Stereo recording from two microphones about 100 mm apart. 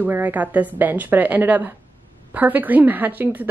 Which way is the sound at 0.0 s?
15° right (ahead or behind).